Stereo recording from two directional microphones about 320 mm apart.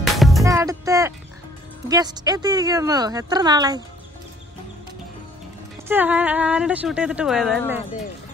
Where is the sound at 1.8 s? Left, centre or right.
Centre.